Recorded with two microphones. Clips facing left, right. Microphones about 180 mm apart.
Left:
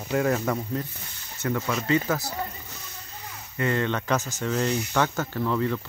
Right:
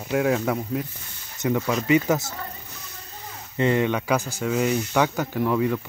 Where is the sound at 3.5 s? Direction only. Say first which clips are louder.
Right 4 dB; 20° right (ahead or behind).